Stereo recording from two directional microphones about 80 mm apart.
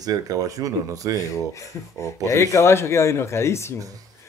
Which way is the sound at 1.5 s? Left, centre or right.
Left.